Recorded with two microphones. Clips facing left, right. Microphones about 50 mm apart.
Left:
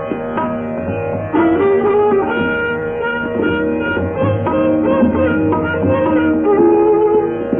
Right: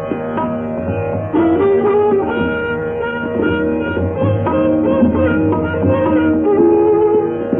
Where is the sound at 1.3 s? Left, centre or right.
Left.